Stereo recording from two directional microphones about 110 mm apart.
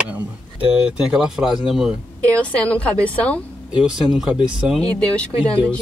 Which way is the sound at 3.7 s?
5° right (ahead or behind).